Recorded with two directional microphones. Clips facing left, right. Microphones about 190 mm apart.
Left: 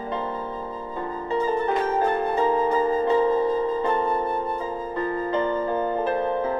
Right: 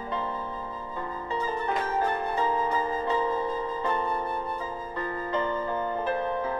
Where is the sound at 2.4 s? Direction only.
50° left (ahead or behind).